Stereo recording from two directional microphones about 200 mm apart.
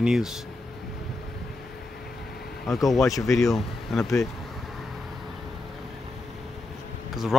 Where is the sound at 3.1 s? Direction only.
15° left (ahead or behind).